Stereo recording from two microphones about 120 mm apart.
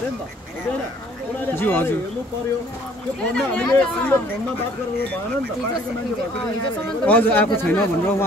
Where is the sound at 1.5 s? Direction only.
15° left (ahead or behind).